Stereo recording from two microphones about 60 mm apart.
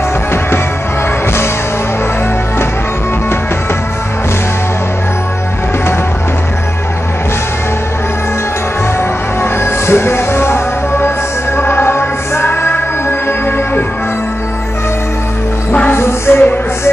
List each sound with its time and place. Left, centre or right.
9.4 s music: left
15.9 s music: left